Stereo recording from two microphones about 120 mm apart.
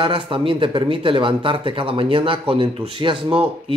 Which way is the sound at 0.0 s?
50° right (ahead or behind).